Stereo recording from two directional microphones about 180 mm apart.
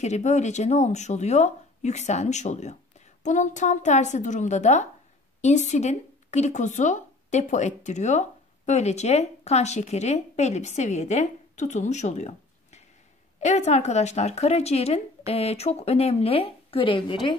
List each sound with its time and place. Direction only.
0.0 s speech: 40° left (ahead or behind)